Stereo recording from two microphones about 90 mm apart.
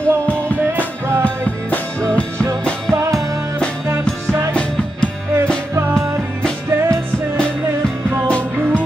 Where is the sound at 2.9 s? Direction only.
30° right (ahead or behind).